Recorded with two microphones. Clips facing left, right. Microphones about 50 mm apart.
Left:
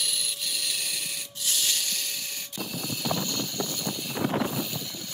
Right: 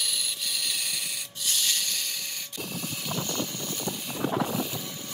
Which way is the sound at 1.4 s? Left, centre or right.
Centre.